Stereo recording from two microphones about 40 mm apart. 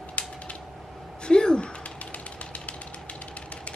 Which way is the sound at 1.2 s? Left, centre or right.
Left.